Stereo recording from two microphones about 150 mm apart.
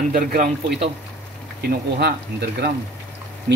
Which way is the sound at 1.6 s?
90° right.